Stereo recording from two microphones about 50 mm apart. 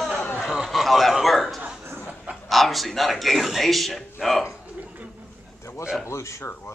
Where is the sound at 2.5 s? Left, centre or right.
Centre.